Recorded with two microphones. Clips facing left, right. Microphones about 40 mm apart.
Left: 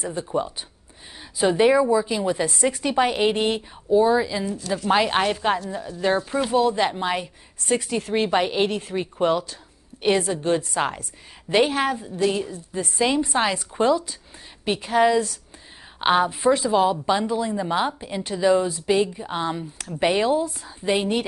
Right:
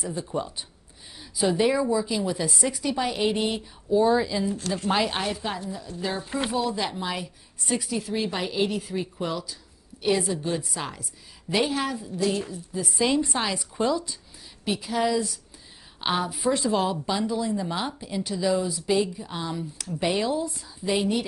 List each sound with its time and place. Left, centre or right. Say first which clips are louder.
0.0 s a woman's voice: left 3 dB; left
0.3 s a woman's voice: left 5 dB; centre
1.4 s a woman's voice: left 5 dB; left
3.9 s a woman's voice: left 3 dB; centre
4.9 s a woman's voice: left 7 dB; left
6.7 s a woman's voice: left 6 dB; left
16.5 s a woman's voice: left 5 dB; centre; by 21.3 s left